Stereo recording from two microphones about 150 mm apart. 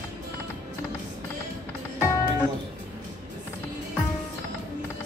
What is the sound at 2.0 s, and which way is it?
Music, 20° left (ahead or behind).